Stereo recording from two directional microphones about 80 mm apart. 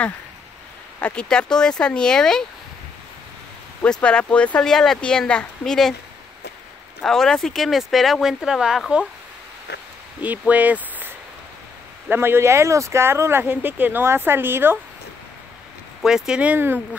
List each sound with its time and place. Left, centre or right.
1.0 s speech: centre
4.0 s speech: centre
7.0 s speech: centre
10.2 s speech: centre
16.0 s speech: centre
16.5 s speech: right